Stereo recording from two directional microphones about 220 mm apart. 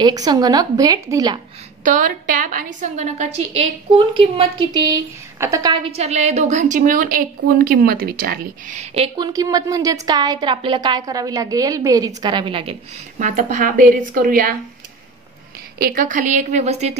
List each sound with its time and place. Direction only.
0.0 s a woman's voice: 20° right (ahead or behind)
1.9 s a woman's voice: 35° right (ahead or behind)
13.2 s a woman's voice: 35° right (ahead or behind)
15.8 s a woman's voice: 40° right (ahead or behind)